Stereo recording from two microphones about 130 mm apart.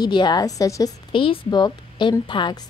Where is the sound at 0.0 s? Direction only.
35° left (ahead or behind).